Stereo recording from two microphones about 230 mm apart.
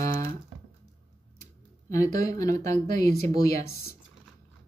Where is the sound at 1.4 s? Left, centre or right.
Centre.